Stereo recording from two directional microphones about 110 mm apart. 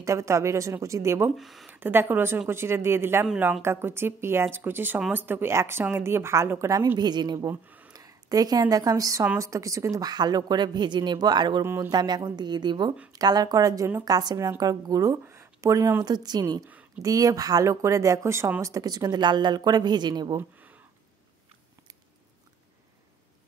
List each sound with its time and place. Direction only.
0.0 s a woman's voice: 25° right (ahead or behind)
1.3 s speech: centre (ahead or behind)
1.7 s a woman's voice: 20° right (ahead or behind)
7.0 s speech: 40° right (ahead or behind)
7.4 s a sound: 15° right (ahead or behind)
7.9 s speech: 35° right (ahead or behind)
11.6 s a woman's voice: 20° right (ahead or behind)
11.9 s speech: 40° right (ahead or behind); by 16.0 s 25° right (ahead or behind)
16.0 s a woman's voice: 40° right (ahead or behind)